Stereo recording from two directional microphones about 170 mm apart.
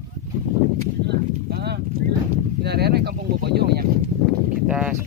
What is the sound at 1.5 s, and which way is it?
Speech, 70° right (ahead or behind).